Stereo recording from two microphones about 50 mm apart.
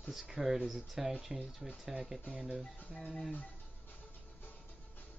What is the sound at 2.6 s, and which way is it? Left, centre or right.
Music, left.